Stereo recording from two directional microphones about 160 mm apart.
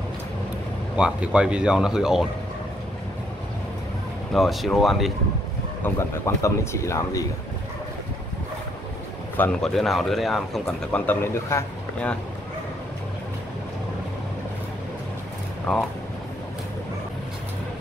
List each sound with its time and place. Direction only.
0.9 s speech: 5° right (ahead or behind)
4.3 s speech: centre (ahead or behind)
5.9 s speech: 15° left (ahead or behind)
9.4 s speech: 5° left (ahead or behind)
15.7 s speech: 5° left (ahead or behind)